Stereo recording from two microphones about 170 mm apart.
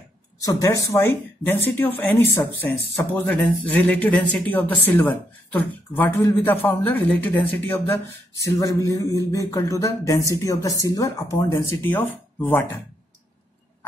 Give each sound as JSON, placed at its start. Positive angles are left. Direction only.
{"t": 0.5, "sound": "speech", "side_deg": 20}